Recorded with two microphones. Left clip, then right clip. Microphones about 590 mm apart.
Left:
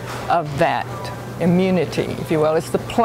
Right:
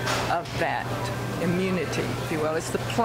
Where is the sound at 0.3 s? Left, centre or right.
Left.